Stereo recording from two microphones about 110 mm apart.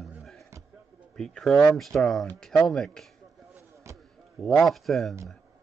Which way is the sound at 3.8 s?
25° right (ahead or behind).